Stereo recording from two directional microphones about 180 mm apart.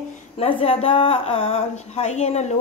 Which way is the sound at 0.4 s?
30° left (ahead or behind).